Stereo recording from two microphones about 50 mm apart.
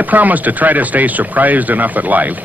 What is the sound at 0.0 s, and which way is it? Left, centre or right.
Speech, right.